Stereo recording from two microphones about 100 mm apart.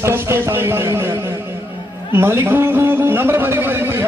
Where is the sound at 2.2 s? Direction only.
25° right (ahead or behind).